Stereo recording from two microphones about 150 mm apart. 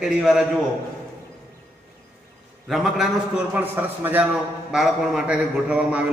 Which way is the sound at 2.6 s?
Centre (ahead or behind).